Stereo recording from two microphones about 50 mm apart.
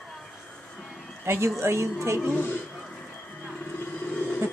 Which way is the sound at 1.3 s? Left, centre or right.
Right.